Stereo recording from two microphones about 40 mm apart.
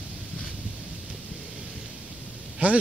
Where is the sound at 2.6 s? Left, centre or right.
Right.